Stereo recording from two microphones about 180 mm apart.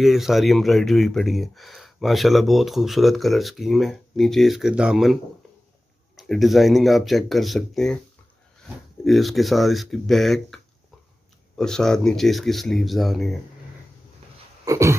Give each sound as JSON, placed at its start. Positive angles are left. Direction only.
{"t": 0.0, "sound": "speech", "side_deg": 0}
{"t": 9.0, "sound": "speech", "side_deg": 0}
{"t": 14.6, "sound": "a sound", "side_deg": -15}